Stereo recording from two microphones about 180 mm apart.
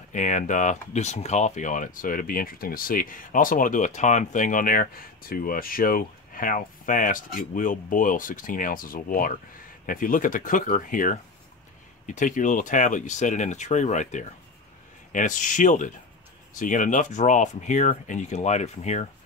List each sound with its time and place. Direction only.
0.1 s speech: 45° left (ahead or behind)